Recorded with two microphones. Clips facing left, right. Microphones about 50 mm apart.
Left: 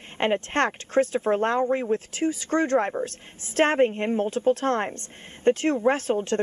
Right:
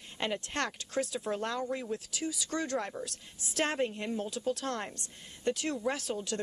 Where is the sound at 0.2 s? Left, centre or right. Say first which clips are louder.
Left 11 dB; left.